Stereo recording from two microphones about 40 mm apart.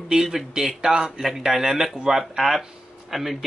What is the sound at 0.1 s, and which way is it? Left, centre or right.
Speech, centre.